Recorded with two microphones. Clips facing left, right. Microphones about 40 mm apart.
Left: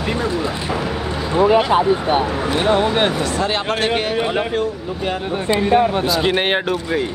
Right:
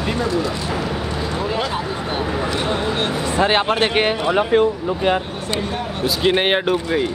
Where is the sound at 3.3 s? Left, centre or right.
Right.